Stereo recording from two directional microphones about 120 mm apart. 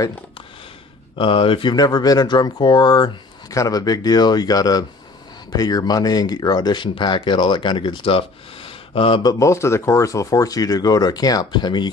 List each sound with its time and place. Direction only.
1.1 s speech: 45° left (ahead or behind)
9.2 s speech: 30° left (ahead or behind)